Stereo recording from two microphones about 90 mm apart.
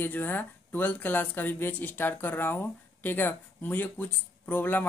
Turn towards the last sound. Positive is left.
turn(degrees=20)  # may be behind; listen again after turning